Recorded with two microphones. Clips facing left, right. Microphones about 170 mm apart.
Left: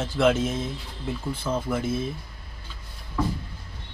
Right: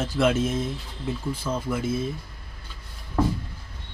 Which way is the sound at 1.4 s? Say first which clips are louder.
Left 3 dB; centre (ahead or behind).